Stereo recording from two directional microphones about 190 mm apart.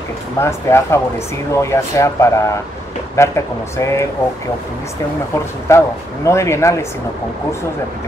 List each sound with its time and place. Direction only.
0.4 s speech: 15° left (ahead or behind)
5.7 s speech: 15° left (ahead or behind)